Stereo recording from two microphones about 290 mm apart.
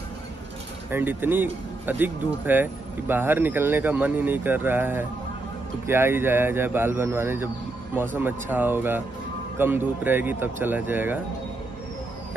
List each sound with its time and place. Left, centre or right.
0.8 s speech: centre